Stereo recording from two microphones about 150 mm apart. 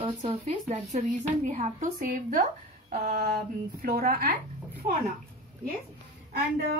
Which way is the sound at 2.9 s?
70° right (ahead or behind).